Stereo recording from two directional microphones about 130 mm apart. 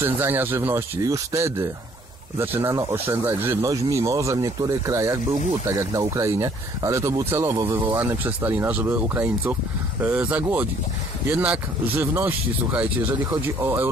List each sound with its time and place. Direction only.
0.0 s speech: 15° right (ahead or behind)